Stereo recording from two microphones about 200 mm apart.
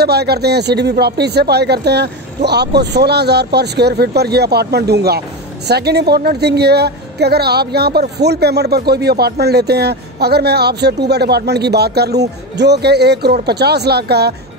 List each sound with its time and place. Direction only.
0.0 s a woman's voice: 55° right (ahead or behind)